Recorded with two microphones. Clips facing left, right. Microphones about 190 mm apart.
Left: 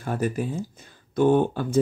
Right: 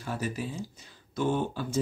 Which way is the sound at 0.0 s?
55° left (ahead or behind).